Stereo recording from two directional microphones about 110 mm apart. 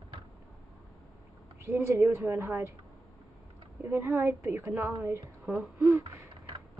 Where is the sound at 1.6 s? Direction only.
20° right (ahead or behind).